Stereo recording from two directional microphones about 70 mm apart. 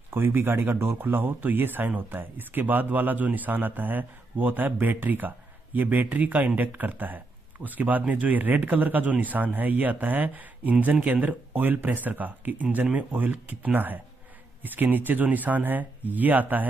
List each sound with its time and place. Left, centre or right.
0.1 s speech: right